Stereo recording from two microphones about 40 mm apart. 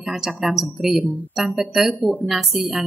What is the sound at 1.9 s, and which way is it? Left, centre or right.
Speech, right.